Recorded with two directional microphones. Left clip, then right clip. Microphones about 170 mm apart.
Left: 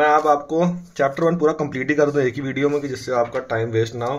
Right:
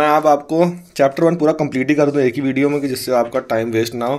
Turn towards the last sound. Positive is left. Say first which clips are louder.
# right 3 dB
turn(degrees=-50)  # may be behind; listen again after turning